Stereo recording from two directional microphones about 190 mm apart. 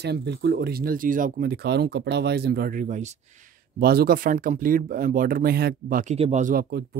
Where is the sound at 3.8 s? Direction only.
55° right (ahead or behind).